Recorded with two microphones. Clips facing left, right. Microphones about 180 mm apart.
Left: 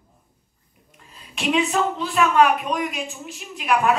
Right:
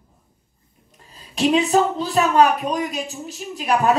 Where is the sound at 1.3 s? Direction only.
35° right (ahead or behind).